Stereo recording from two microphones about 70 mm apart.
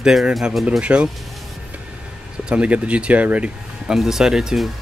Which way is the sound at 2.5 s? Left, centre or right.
Centre.